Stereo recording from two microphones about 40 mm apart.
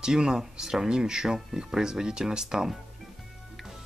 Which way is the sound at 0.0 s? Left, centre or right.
Centre.